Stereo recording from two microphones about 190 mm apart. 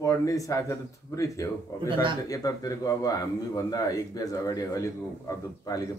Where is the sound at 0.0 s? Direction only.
15° left (ahead or behind).